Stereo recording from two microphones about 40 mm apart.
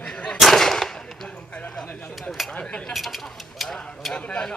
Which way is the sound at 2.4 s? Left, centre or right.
Centre.